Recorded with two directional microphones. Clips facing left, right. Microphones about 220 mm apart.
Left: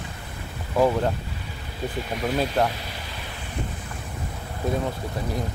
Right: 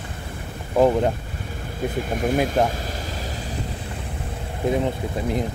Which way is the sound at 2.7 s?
45° right (ahead or behind).